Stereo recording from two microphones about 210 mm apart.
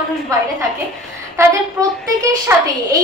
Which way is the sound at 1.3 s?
15° right (ahead or behind).